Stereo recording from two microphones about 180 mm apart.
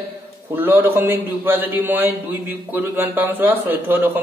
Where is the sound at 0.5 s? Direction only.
10° right (ahead or behind).